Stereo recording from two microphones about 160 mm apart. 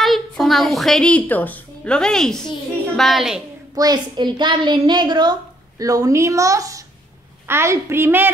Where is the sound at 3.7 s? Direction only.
25° right (ahead or behind).